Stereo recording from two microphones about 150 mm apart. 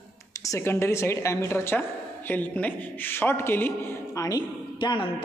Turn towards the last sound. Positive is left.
turn(degrees=30)  # may be behind; listen again after turning